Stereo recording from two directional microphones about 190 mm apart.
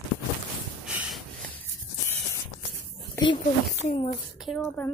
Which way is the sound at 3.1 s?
20° left (ahead or behind).